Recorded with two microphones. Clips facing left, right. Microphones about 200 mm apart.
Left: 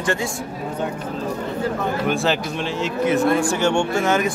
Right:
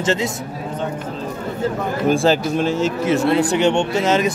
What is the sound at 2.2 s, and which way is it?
Speech, 40° right (ahead or behind).